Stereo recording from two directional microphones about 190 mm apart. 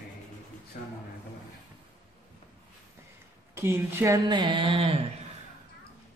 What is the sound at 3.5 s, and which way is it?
Speech, 15° right (ahead or behind).